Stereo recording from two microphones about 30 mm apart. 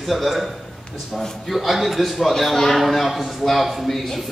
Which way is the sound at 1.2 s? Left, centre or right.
Centre.